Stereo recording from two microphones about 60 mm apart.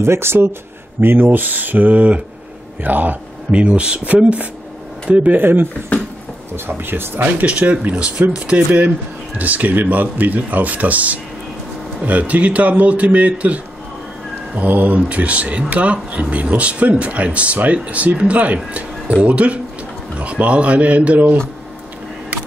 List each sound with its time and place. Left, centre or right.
0.0 s speech: right
5.4 s speech: right
5.9 s a sound: left
6.5 s speech: right
7.5 s speech: right
18.7 s a sound: right
19.2 s speech: right